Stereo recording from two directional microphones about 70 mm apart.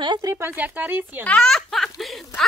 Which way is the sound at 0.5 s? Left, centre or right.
Right.